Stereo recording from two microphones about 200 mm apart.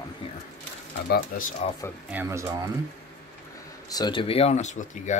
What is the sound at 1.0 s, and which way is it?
Speech, 50° left (ahead or behind).